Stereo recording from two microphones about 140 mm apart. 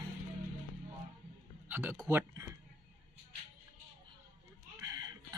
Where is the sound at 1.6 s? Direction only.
15° right (ahead or behind).